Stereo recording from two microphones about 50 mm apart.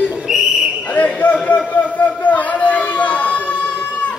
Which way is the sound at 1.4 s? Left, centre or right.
Left.